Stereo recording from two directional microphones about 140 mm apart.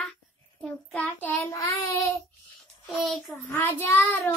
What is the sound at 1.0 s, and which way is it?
Child singing, 20° left (ahead or behind).